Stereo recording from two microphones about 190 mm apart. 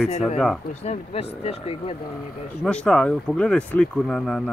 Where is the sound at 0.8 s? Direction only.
35° left (ahead or behind).